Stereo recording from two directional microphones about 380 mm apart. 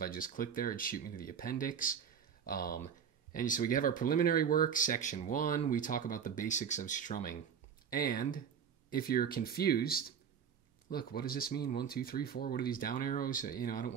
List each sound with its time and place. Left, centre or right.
0.0 s speech: left